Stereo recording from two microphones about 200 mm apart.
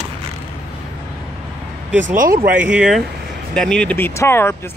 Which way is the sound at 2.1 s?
40° right (ahead or behind).